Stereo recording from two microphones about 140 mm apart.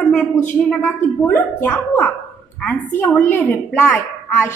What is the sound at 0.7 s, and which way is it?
A woman's voice, 10° left (ahead or behind).